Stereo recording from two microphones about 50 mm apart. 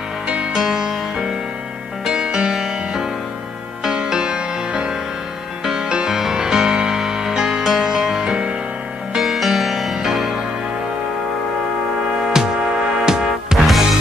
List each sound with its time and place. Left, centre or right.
0.3 s music: centre
8.2 s music: right
9.1 s music: centre
12.3 s music: centre